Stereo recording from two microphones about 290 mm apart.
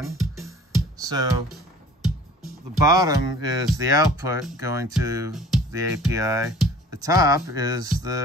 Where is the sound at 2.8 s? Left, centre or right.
Centre.